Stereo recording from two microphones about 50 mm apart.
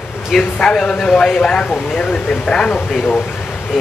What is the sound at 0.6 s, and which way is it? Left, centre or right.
Speech, centre.